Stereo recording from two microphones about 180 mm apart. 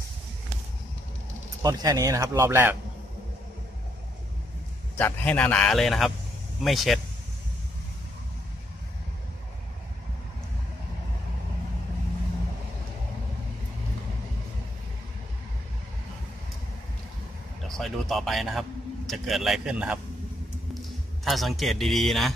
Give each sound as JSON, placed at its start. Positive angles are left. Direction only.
{"t": 1.6, "sound": "speech", "side_deg": -20}
{"t": 4.9, "sound": "a man's voice", "side_deg": 10}
{"t": 17.6, "sound": "a man's voice", "side_deg": 0}